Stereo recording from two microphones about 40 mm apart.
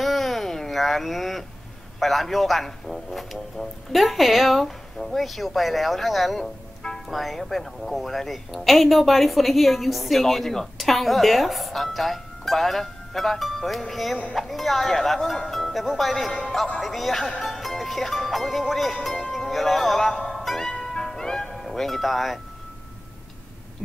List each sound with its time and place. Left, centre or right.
0.0 s a sound: centre
2.0 s a woman's voice: centre
16.3 s speech: centre
16.8 s a woman's voice: centre
19.3 s music: centre
21.6 s a woman's voice: centre